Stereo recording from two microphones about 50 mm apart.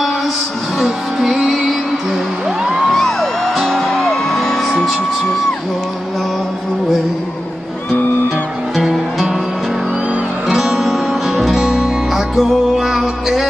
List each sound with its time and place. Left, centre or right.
0.7 s music: centre
2.9 s music: centre
7.9 s music: left
8.7 s music: centre
10.5 s music: centre